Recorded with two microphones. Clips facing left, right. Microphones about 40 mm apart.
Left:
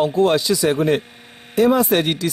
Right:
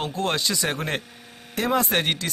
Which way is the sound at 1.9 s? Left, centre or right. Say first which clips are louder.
Left 5 dB; right.